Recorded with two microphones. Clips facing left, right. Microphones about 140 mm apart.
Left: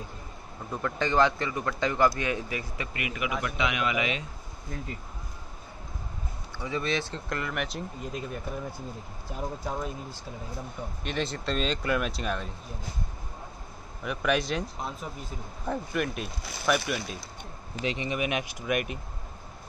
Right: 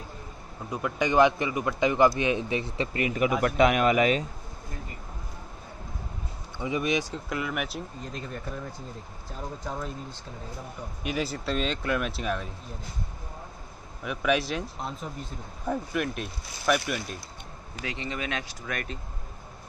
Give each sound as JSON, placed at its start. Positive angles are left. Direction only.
{"t": 0.7, "sound": "speech", "side_deg": -15}
{"t": 6.6, "sound": "speech", "side_deg": -15}
{"t": 8.0, "sound": "speech", "side_deg": 5}
{"t": 9.7, "sound": "speech", "side_deg": 10}
{"t": 11.1, "sound": "speech", "side_deg": -5}
{"t": 14.0, "sound": "speech", "side_deg": -5}
{"t": 17.8, "sound": "speech", "side_deg": 15}